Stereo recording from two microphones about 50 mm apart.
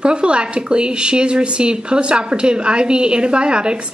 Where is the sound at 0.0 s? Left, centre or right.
Centre.